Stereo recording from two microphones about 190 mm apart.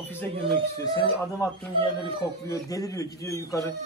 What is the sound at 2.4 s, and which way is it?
A man's voice, 20° left (ahead or behind).